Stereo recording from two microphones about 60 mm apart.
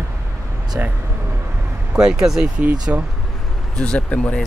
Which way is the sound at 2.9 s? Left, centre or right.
Right.